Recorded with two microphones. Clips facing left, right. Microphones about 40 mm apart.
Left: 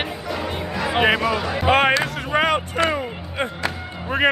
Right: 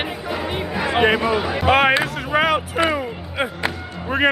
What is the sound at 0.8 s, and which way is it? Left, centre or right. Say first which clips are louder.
Speech: right 1 dB; centre.